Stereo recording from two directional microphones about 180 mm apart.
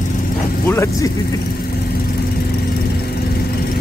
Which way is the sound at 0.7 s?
15° left (ahead or behind).